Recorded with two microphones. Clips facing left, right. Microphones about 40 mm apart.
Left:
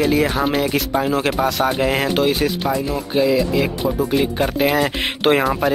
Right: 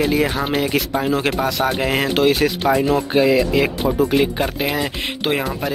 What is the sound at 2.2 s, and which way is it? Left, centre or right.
Speech, centre.